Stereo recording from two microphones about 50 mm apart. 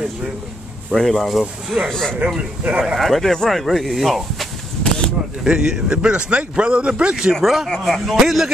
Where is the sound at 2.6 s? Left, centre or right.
Right.